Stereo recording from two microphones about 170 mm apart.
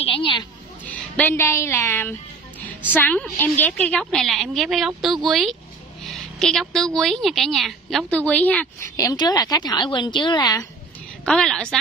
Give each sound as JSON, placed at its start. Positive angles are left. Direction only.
{"t": 0.0, "sound": "a sound", "side_deg": 30}
{"t": 0.8, "sound": "a woman's voice", "side_deg": 10}
{"t": 8.9, "sound": "speech", "side_deg": 25}
{"t": 11.2, "sound": "a woman's voice", "side_deg": 5}